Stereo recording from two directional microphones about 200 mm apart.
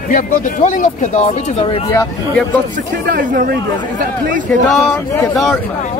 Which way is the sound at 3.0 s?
50° right (ahead or behind).